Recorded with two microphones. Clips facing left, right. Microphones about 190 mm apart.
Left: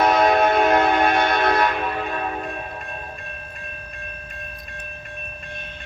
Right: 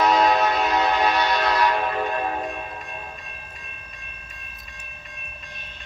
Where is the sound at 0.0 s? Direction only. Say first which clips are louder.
Left 2 dB; 50° left (ahead or behind).